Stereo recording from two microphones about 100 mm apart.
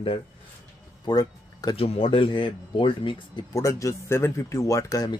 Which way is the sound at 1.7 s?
75° left (ahead or behind).